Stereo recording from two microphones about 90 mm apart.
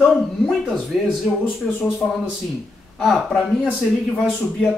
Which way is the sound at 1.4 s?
20° left (ahead or behind).